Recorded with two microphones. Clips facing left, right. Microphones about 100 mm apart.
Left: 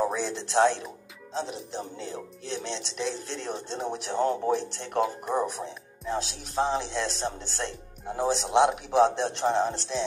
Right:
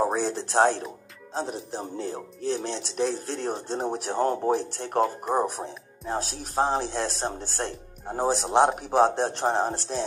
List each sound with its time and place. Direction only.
0.0 s speech: 40° right (ahead or behind)